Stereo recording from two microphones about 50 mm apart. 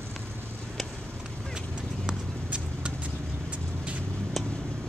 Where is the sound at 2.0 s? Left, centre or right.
Right.